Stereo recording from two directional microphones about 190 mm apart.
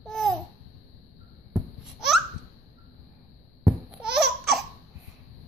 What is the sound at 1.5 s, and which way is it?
Babbling, centre (ahead or behind).